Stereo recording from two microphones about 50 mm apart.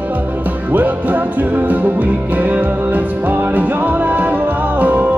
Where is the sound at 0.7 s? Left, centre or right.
Right.